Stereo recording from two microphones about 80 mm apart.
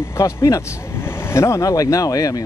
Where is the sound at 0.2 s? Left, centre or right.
Left.